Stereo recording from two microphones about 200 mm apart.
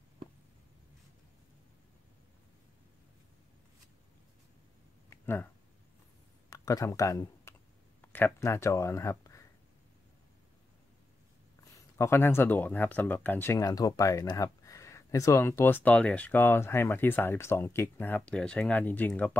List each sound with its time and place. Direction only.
5.1 s a sound: 10° left (ahead or behind)
6.5 s speech: 15° left (ahead or behind)
11.7 s speech: 15° left (ahead or behind)